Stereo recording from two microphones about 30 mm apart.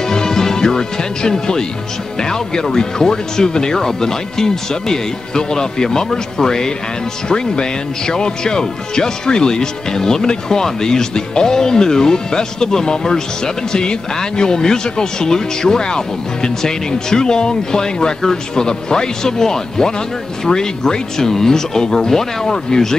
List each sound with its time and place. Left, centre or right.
0.1 s music: centre
1.3 s speech: left